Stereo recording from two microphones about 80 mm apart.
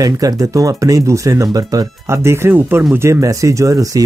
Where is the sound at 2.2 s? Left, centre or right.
Right.